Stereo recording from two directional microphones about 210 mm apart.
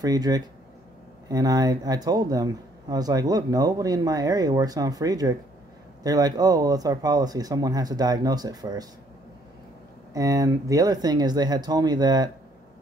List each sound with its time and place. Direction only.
0.0 s speech: 20° right (ahead or behind)
10.1 s speech: 15° right (ahead or behind)